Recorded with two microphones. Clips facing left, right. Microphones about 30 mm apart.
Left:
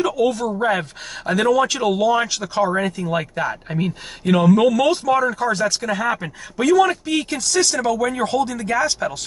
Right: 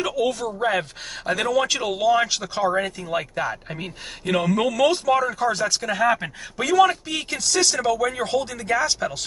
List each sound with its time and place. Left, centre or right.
0.0 s speech: centre